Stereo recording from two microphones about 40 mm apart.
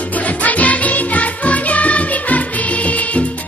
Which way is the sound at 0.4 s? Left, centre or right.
Left.